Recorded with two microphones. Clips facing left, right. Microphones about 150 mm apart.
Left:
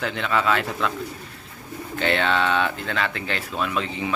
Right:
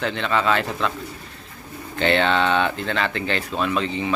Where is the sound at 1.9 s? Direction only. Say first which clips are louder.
Right 3 dB; centre (ahead or behind).